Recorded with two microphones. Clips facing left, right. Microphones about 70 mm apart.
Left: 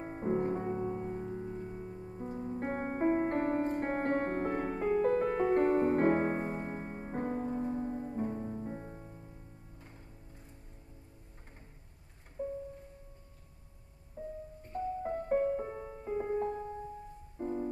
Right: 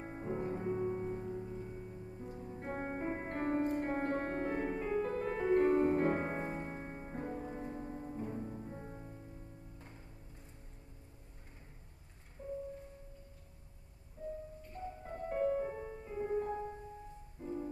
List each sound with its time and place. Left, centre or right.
0.0 s music: left
0.7 s music: centre
1.2 s music: left
2.0 s music: left
7.2 s music: left
7.5 s music: centre
12.4 s music: left
14.2 s music: left